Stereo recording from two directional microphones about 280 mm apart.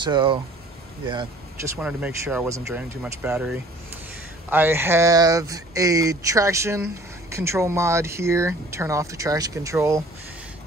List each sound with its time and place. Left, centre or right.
0.0 s speech: centre
1.8 s speech: centre